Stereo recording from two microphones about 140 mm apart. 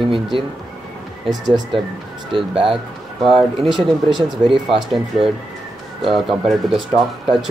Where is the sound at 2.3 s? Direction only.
40° right (ahead or behind).